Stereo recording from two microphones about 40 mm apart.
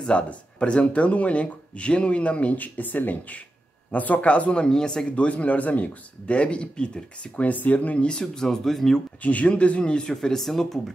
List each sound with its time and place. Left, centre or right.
0.0 s speech: left
2.5 s speech: left
7.4 s speech: left
8.1 s speech: centre
9.2 s speech: left; by 10.8 s centre